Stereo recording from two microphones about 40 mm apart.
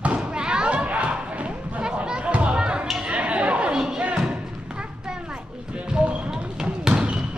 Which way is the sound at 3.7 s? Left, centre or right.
Centre.